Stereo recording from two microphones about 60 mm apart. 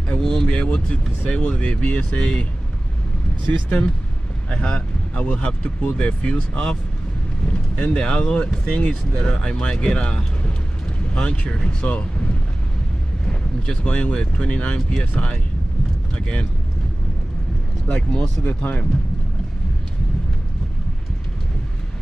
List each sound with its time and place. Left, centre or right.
0.1 s speech: centre
3.6 s speech: left
11.9 s boat: centre
13.3 s speech: centre
17.8 s speech: centre
18.4 s speech: left